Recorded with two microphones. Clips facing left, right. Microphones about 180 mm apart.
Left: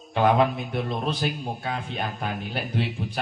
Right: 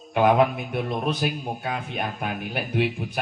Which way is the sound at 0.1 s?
10° right (ahead or behind).